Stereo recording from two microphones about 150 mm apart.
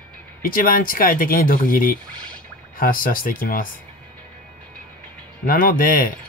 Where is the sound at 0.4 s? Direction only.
75° left (ahead or behind).